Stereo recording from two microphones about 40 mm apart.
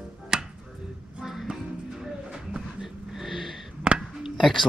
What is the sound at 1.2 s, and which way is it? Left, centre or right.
Music, centre.